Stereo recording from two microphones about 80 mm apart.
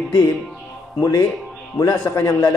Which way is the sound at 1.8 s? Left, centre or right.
Left.